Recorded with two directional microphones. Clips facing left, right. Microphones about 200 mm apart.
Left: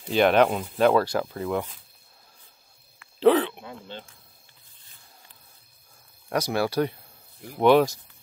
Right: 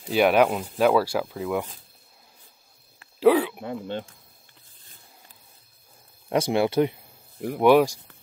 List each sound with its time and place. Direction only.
0.0 s speech: 5° right (ahead or behind)
3.2 s a sound: 10° right (ahead or behind)
3.6 s speech: 50° right (ahead or behind)
6.2 s speech: 25° right (ahead or behind)